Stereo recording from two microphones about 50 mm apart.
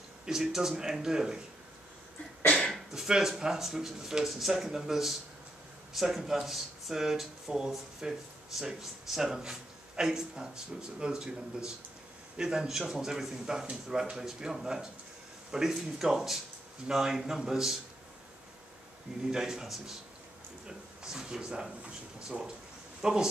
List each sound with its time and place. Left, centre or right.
0.2 s speech: centre
2.7 s speech: centre
19.3 s speech: centre